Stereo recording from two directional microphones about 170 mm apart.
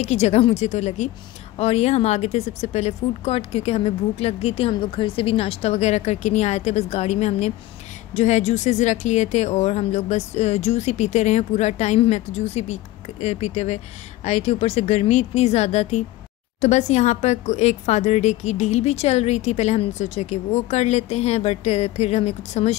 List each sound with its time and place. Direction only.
0.0 s a woman's voice: 40° left (ahead or behind)